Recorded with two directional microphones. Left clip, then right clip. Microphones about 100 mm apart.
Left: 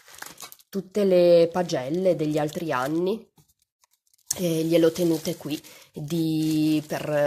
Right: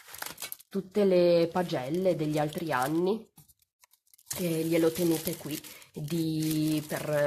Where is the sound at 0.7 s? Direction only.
40° left (ahead or behind).